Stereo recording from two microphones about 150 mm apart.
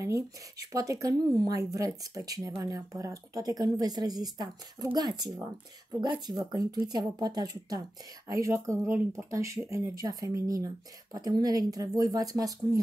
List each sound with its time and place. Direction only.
0.0 s speech: 20° right (ahead or behind)